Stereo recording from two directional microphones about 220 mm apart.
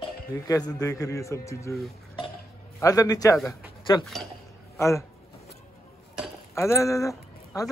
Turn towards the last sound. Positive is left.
turn(degrees=15)  # may be behind; listen again after turning